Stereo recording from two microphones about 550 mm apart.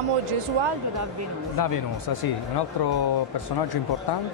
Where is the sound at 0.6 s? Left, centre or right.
Right.